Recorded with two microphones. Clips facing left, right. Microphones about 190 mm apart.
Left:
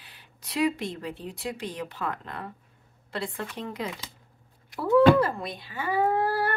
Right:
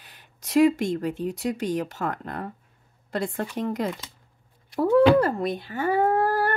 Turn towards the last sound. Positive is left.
turn(degrees=-45)  # may be behind; listen again after turning